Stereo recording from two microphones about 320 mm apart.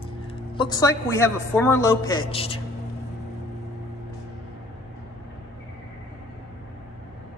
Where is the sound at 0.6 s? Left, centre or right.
Centre.